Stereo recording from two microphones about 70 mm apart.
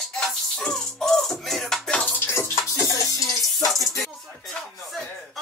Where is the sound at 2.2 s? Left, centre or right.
Left.